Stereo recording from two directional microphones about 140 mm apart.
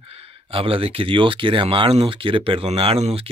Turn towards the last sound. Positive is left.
turn(degrees=-45)  # may be behind; listen again after turning